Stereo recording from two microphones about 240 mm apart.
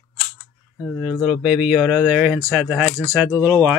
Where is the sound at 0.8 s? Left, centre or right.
Centre.